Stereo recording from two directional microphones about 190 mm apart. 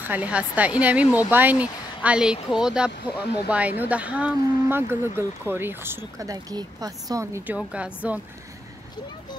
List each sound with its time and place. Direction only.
0.0 s speech: 10° right (ahead or behind)